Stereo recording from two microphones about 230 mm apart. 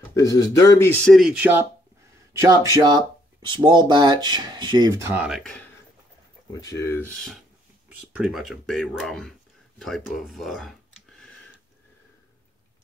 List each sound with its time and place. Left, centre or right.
0.1 s speech: centre
6.5 s speech: centre